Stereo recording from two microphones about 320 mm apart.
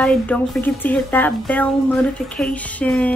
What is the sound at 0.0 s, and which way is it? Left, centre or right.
A woman's voice, centre.